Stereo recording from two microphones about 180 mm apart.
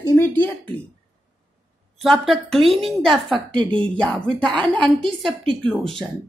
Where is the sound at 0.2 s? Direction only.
10° left (ahead or behind).